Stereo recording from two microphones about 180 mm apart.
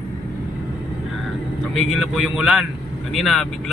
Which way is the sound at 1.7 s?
Centre (ahead or behind).